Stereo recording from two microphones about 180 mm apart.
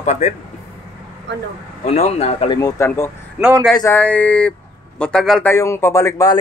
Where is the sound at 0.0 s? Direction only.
40° left (ahead or behind).